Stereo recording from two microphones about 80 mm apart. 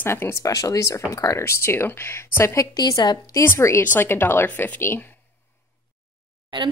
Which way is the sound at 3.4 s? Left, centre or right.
Left.